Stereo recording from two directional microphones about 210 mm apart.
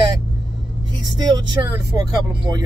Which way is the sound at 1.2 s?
20° right (ahead or behind).